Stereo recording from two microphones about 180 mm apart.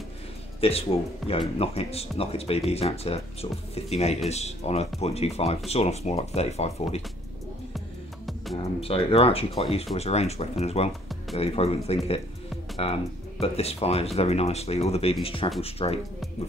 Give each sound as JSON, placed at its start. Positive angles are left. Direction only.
{"t": 0.6, "sound": "speech", "side_deg": 35}
{"t": 8.8, "sound": "speech", "side_deg": 30}